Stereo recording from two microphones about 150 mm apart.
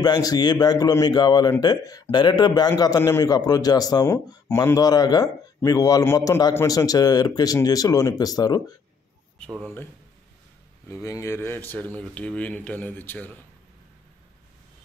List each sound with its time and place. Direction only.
0.0 s a man's voice: 25° left (ahead or behind)
10.9 s speech: 20° left (ahead or behind)